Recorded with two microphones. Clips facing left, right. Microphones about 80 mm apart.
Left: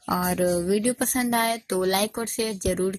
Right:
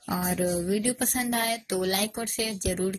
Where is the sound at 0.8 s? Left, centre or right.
Left.